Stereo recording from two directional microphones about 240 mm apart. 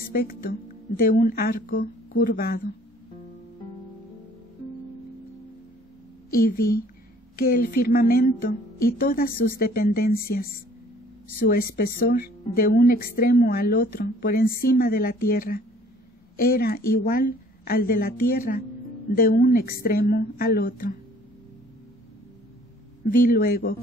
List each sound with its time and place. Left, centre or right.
0.1 s speech: left
6.4 s speech: left
23.0 s speech: left